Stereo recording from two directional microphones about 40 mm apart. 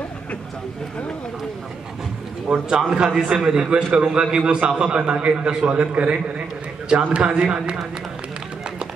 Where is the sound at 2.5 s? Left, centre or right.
Centre.